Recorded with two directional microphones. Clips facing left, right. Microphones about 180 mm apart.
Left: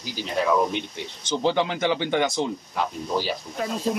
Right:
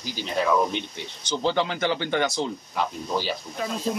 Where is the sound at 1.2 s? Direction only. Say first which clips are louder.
Left 2 dB; 15° left (ahead or behind).